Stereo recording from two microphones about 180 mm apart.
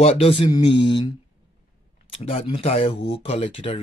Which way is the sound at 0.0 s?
30° left (ahead or behind).